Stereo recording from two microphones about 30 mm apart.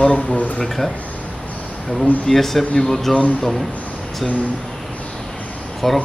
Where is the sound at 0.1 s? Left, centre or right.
Left.